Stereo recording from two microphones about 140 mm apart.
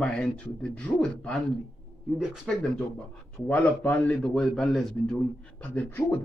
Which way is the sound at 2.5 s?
5° left (ahead or behind).